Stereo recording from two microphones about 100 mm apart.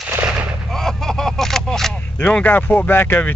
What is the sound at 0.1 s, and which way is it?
Gunshot, 15° right (ahead or behind).